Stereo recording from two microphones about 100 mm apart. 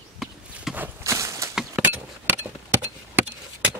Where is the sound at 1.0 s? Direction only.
30° right (ahead or behind).